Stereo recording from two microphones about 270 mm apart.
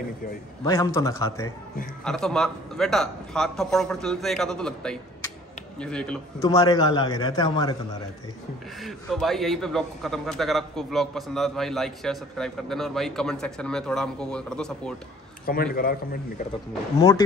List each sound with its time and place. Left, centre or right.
0.7 s a man's voice: centre
8.8 s a man's voice: centre
15.4 s a man's voice: left